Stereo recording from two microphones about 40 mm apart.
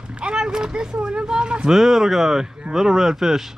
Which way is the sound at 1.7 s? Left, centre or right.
Centre.